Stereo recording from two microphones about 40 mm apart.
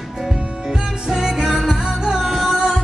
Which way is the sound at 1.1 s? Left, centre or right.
Centre.